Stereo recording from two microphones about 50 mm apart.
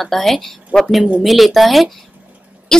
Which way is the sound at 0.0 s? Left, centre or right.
Centre.